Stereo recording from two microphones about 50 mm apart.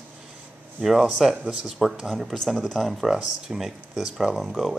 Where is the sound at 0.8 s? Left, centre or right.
Centre.